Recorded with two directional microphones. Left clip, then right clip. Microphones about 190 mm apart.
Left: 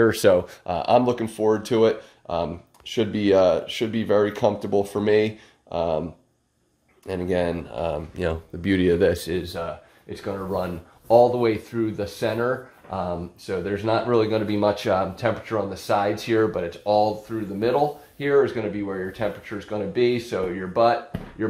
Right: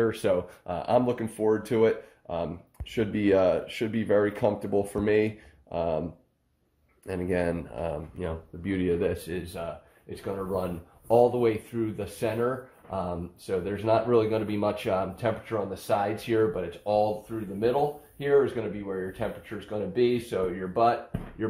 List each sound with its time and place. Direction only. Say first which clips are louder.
0.0 s speech: left 8 dB; 35° left (ahead or behind)
0.7 s speech: left 5 dB; 25° left (ahead or behind)
7.1 s speech: left 4 dB; 5° left (ahead or behind)
8.2 s speech: left 8 dB; 35° left (ahead or behind); by 12.4 s 20° left (ahead or behind)
13.5 s speech: left 2 dB; 15° left (ahead or behind)
18.2 s speech: left 4 dB; 30° left (ahead or behind)